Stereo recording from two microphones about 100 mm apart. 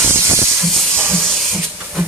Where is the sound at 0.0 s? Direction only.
25° right (ahead or behind).